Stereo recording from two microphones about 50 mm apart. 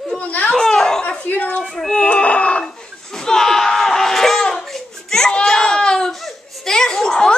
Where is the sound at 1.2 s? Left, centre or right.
Left.